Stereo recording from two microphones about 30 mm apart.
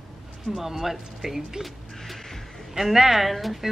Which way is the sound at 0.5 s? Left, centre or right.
Centre.